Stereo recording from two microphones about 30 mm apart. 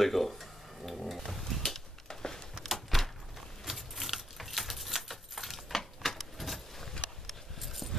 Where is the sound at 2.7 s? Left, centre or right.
Centre.